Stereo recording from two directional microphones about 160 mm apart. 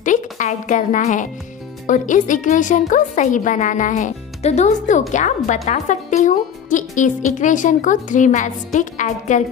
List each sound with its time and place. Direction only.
0.0 s speech: 50° left (ahead or behind)